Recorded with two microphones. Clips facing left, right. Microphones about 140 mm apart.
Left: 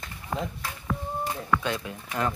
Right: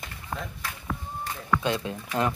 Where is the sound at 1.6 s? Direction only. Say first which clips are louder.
Right 3 dB; 25° right (ahead or behind).